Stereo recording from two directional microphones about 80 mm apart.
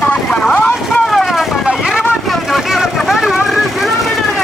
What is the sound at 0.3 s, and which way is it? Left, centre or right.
Vehicle, centre.